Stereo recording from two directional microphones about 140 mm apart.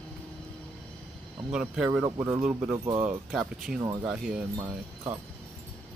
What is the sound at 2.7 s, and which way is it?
Speech, 25° right (ahead or behind).